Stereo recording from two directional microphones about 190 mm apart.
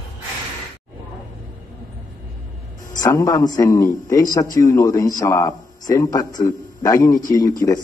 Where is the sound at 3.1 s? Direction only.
15° left (ahead or behind).